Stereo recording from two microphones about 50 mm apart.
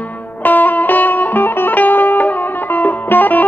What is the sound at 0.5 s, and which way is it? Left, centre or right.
Music, left.